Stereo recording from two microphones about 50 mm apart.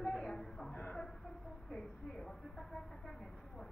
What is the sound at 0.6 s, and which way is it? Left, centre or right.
Speech, centre.